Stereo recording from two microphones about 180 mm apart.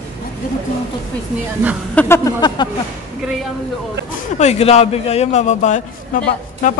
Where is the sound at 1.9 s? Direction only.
10° left (ahead or behind).